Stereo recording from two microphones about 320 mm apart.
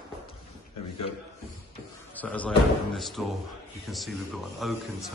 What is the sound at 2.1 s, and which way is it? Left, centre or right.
A man's voice, centre.